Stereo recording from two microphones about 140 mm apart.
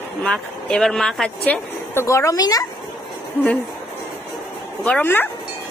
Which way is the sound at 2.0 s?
20° left (ahead or behind).